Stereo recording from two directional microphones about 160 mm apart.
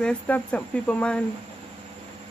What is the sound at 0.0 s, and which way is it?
Speech, 10° left (ahead or behind).